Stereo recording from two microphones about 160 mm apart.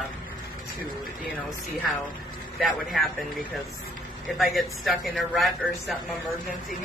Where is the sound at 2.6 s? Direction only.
Centre (ahead or behind).